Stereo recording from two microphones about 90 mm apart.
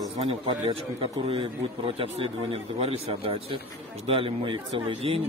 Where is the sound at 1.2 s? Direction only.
90° right.